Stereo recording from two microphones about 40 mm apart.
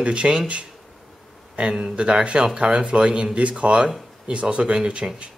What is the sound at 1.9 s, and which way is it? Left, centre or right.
A man's voice, right.